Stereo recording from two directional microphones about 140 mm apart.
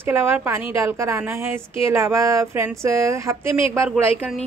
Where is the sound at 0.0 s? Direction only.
15° right (ahead or behind).